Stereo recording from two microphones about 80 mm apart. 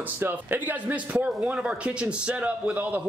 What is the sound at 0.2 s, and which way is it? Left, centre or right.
A man's voice, right.